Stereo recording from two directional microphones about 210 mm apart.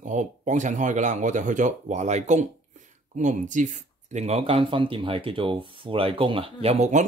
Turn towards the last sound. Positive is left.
turn(degrees=-35)  # may be behind; listen again after turning